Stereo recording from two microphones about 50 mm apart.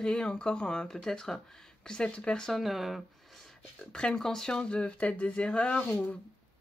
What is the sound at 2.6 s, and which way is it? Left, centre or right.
Speech, centre.